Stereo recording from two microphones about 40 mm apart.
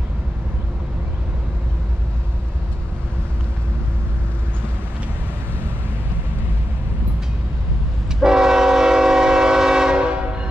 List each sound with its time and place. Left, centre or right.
8.2 s train: centre